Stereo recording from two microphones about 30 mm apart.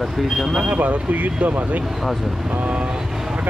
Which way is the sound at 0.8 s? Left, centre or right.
Right.